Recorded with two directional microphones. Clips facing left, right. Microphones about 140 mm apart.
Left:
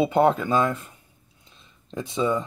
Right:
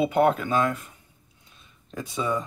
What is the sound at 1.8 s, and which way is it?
Speech, 25° left (ahead or behind).